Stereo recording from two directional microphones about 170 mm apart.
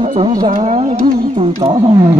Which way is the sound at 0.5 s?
35° right (ahead or behind).